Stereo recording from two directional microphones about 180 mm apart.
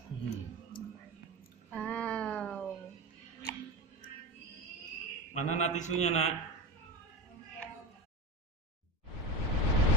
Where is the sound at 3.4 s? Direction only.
20° left (ahead or behind).